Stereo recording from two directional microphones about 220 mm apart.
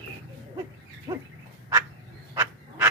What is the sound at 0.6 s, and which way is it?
Owl, 15° right (ahead or behind).